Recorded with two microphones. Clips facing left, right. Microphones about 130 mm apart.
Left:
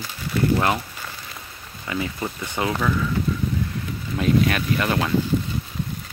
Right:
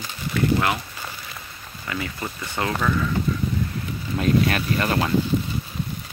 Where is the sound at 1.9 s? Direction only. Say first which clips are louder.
Left 3 dB; 20° left (ahead or behind).